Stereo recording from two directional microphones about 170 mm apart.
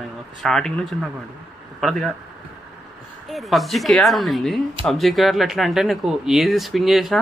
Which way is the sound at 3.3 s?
Centre (ahead or behind).